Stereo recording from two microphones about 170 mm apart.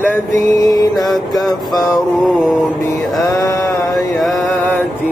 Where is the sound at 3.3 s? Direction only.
20° left (ahead or behind).